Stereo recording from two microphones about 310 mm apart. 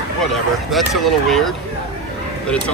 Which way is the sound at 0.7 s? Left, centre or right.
Centre.